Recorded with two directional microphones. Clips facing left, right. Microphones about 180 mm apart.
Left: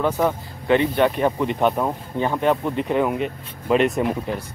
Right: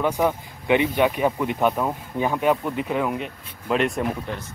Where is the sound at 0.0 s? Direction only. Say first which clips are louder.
Left 1 dB; 10° right (ahead or behind).